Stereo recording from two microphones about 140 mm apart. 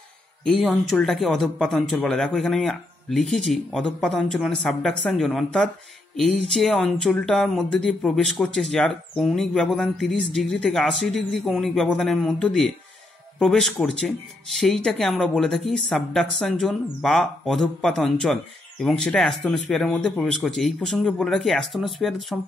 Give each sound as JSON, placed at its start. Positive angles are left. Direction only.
{"t": 0.5, "sound": "speech", "side_deg": 0}